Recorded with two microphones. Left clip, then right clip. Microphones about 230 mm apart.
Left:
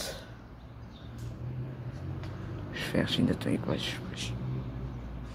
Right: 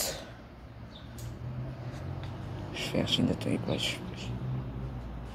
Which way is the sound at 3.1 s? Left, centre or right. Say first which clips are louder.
Right 1 dB; left.